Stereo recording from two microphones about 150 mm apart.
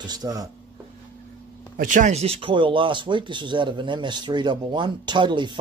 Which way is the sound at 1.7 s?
60° right (ahead or behind).